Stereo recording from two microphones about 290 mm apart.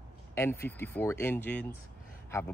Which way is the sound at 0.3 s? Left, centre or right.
Centre.